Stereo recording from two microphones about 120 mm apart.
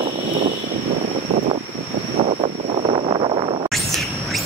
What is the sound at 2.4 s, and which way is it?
Vehicle, 50° right (ahead or behind).